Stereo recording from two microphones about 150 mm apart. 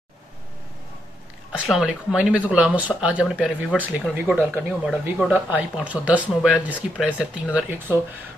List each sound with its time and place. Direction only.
1.5 s speech: 5° right (ahead or behind)